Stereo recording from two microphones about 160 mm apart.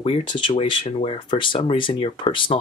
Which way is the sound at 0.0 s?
35° left (ahead or behind).